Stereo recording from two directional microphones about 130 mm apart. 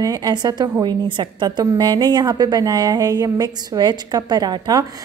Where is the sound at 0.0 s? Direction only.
30° right (ahead or behind).